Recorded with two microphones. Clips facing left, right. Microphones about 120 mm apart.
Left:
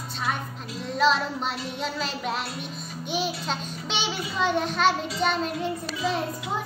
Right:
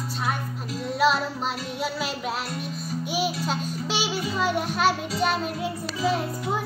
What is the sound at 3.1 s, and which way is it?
Music, 5° right (ahead or behind).